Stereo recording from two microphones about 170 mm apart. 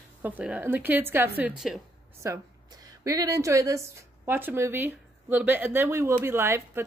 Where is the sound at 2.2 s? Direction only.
20° right (ahead or behind).